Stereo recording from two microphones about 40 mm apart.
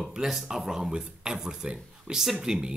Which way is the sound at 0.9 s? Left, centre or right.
Right.